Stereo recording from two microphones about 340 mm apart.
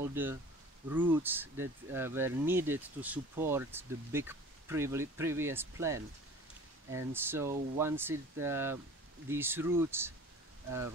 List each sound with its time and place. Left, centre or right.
0.0 s speech: centre